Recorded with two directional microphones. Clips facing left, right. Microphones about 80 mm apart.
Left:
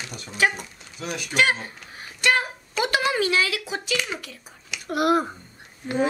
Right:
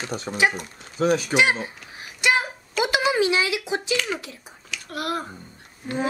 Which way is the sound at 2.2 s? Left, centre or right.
Centre.